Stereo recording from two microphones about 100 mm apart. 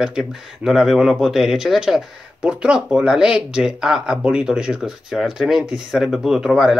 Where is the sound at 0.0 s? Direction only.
5° right (ahead or behind).